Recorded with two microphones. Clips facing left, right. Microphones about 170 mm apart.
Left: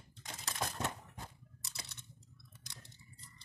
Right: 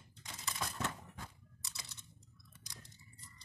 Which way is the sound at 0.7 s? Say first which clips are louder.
Left 1 dB; 25° left (ahead or behind).